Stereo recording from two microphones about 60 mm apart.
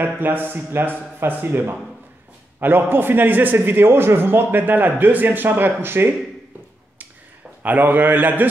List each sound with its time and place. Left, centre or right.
0.0 s a man's voice: right
7.6 s a man's voice: right